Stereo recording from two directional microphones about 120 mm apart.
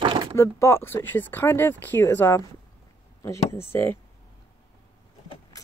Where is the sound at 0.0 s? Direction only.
45° right (ahead or behind).